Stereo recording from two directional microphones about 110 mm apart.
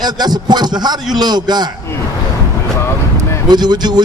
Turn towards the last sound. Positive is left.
turn(degrees=-40)  # may be behind; listen again after turning